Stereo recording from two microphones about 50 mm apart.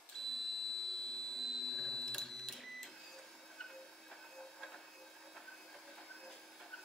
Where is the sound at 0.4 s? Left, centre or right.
Centre.